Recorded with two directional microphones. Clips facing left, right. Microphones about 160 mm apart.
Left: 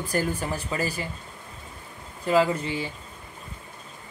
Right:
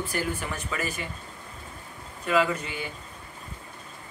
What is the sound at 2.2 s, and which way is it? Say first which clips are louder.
Speech: left 3 dB; 30° left (ahead or behind).